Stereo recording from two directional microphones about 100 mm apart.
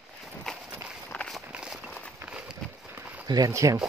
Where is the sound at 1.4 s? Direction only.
10° right (ahead or behind).